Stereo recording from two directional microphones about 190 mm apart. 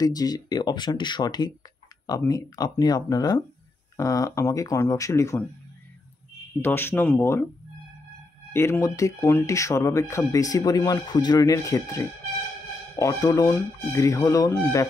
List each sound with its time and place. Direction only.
0.0 s speech: 20° left (ahead or behind)
6.6 s speech: 10° left (ahead or behind)
8.5 s speech: 15° left (ahead or behind)